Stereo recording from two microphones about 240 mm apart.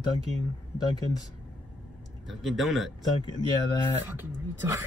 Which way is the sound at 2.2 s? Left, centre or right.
Centre.